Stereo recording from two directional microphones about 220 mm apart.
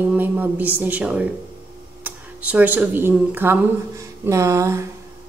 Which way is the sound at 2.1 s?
5° right (ahead or behind).